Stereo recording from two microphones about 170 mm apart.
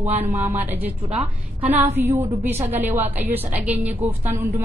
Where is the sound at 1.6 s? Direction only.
10° right (ahead or behind).